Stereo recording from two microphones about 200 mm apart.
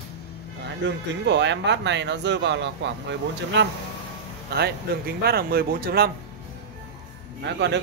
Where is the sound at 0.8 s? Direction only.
60° right (ahead or behind).